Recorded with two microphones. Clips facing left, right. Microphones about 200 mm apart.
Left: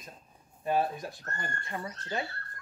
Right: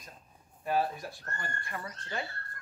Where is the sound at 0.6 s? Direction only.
20° left (ahead or behind).